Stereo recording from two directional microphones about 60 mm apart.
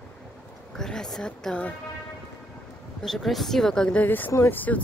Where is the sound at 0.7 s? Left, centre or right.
Centre.